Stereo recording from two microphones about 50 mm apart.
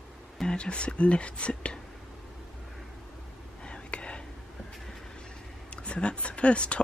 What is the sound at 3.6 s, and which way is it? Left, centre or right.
Whispering, centre.